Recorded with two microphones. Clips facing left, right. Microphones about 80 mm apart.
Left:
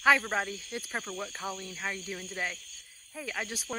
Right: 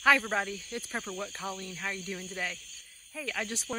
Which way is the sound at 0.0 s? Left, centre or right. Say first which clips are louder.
Even; centre.